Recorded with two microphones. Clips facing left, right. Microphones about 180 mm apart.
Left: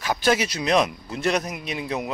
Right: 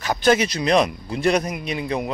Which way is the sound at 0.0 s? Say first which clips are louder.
Right 4 dB; 5° left (ahead or behind).